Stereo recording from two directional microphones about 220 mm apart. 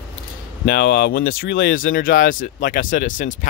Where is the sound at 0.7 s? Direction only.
45° left (ahead or behind).